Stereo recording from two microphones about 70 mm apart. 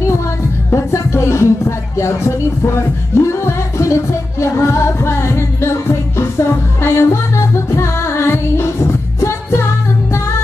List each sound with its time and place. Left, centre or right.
0.7 s music: left